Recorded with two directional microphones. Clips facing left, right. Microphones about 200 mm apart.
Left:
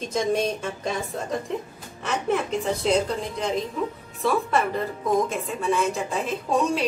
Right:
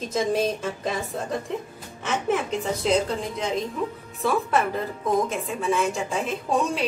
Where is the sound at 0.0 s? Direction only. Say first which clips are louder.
Even; 5° right (ahead or behind).